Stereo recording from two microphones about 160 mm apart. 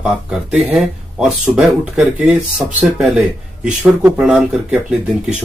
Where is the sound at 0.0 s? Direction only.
5° right (ahead or behind).